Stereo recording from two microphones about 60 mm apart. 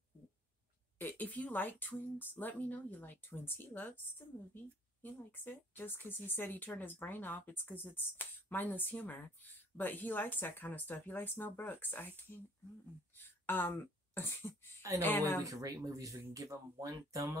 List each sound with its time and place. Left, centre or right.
0.9 s speech: left
5.0 s speech: left
13.2 s speech: left
15.4 s speech: right